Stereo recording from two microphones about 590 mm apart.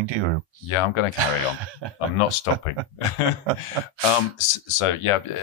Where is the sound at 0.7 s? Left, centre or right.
Left.